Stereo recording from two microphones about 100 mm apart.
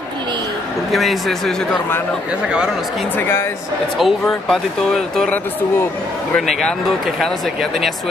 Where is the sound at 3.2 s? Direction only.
20° left (ahead or behind).